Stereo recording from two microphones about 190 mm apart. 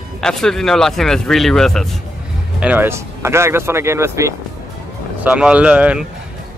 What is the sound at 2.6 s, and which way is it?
Speech, 10° right (ahead or behind).